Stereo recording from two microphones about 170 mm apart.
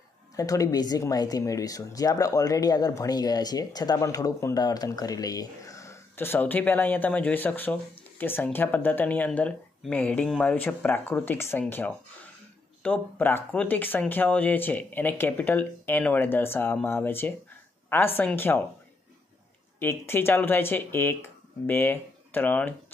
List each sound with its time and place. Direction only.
0.4 s speech: 20° left (ahead or behind)
19.8 s speech: 15° left (ahead or behind)